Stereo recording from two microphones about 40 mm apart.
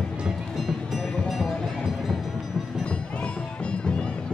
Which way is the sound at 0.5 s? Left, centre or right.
Centre.